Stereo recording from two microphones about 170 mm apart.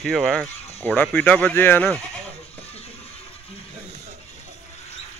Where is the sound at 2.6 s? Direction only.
35° left (ahead or behind).